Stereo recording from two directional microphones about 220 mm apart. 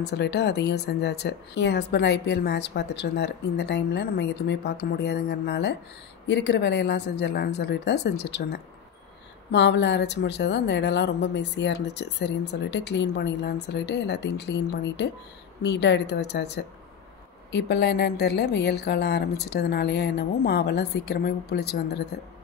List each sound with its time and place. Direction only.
0.0 s a woman's voice: 50° left (ahead or behind)